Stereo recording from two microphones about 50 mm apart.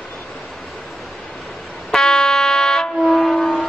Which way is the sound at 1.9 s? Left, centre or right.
Centre.